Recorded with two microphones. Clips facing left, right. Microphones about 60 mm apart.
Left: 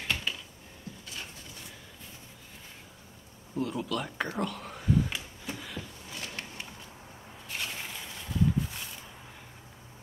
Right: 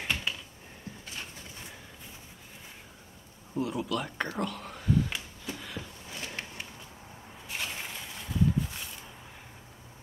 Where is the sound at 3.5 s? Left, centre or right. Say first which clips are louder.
Right 1 dB; centre.